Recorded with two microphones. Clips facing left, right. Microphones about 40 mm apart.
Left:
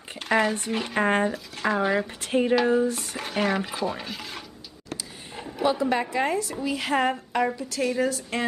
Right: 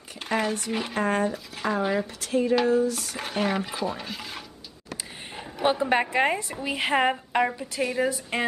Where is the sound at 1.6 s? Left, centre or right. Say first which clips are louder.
Left 2 dB; centre.